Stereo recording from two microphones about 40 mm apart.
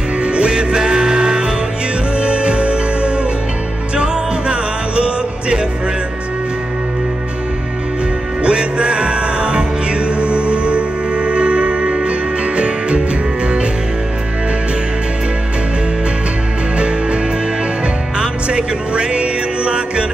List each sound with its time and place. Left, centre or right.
0.2 s music: right
8.4 s music: right
16.7 s music: right
18.2 s music: right